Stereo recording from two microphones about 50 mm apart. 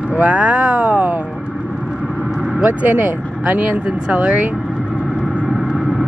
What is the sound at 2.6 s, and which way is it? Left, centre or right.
Speech, right.